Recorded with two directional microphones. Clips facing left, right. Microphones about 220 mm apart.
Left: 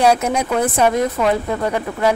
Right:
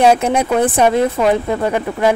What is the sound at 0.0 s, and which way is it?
Speech, 25° right (ahead or behind).